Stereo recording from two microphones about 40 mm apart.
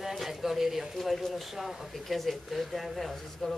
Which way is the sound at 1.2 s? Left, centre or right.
Centre.